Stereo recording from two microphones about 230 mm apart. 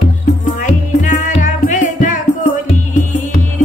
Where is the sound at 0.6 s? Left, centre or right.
Left.